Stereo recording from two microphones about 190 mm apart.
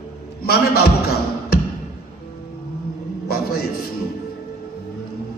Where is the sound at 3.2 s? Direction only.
50° left (ahead or behind).